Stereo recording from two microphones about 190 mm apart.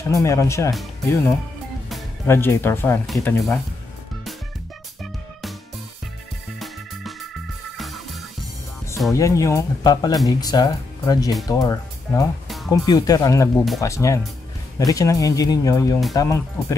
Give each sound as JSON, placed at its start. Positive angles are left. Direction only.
{"t": 0.1, "sound": "speech", "side_deg": 15}
{"t": 2.2, "sound": "speech", "side_deg": 10}
{"t": 3.1, "sound": "speech", "side_deg": 0}
{"t": 6.6, "sound": "music", "side_deg": 0}
{"t": 9.1, "sound": "speech", "side_deg": 15}